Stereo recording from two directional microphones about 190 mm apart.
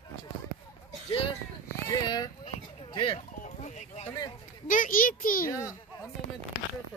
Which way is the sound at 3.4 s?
40° left (ahead or behind).